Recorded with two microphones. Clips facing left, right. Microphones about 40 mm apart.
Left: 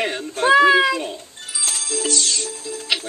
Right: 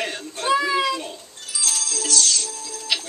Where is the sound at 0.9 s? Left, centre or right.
Left.